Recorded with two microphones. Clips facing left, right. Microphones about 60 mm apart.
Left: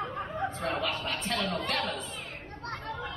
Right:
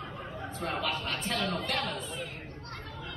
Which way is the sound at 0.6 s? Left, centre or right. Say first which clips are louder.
Right 2 dB; centre.